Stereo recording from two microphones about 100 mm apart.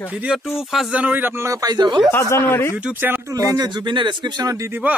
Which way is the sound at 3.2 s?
35° right (ahead or behind).